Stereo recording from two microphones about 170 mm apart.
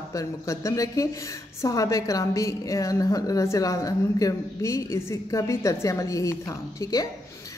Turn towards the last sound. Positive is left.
turn(degrees=20)  # may be behind; listen again after turning